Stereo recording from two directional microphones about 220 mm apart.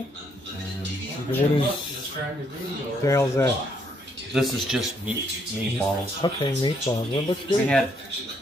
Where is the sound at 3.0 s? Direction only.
10° left (ahead or behind).